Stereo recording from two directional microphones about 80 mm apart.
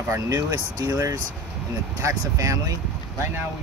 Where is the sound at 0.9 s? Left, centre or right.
Right.